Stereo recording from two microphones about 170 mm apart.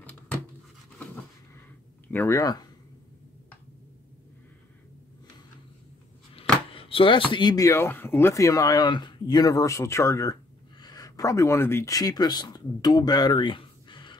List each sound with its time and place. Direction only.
2.0 s speech: 15° left (ahead or behind)
6.7 s speech: 30° left (ahead or behind)